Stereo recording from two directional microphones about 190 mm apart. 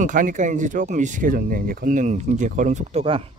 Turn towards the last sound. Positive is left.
turn(degrees=-30)  # may be behind; listen again after turning